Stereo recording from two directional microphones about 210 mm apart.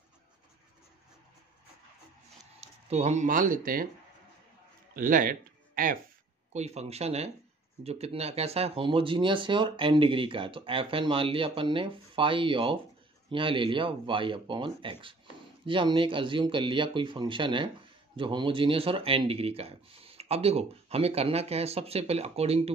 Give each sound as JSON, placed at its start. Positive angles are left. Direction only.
{"t": 2.6, "sound": "speech", "side_deg": -30}
{"t": 4.9, "sound": "speech", "side_deg": -40}